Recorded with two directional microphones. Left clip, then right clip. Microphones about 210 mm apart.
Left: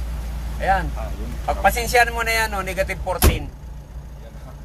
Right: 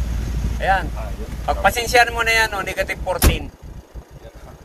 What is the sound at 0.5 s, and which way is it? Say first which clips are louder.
Speech: right 1 dB; 10° left (ahead or behind).